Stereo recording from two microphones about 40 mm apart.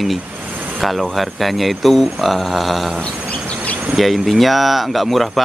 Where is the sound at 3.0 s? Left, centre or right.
Left.